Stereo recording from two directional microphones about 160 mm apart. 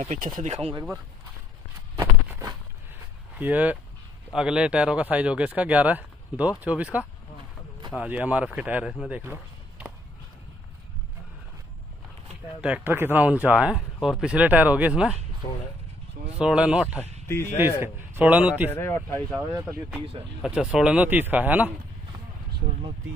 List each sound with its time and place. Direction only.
0.0 s speech: 50° right (ahead or behind)
2.0 s a sound: 20° right (ahead or behind)
3.3 s a man's voice: 10° right (ahead or behind)
9.1 s a sound: 10° right (ahead or behind)
12.6 s speech: 10° right (ahead or behind)
16.3 s a man's voice: 5° right (ahead or behind)
17.0 s speech: 15° left (ahead or behind)
17.6 s speech: 15° right (ahead or behind)
18.7 s speech: 15° left (ahead or behind)
19.5 s speech: 15° right (ahead or behind)
20.4 s speech: 5° right (ahead or behind)